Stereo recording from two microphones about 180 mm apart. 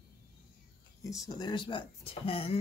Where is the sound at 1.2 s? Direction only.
25° left (ahead or behind).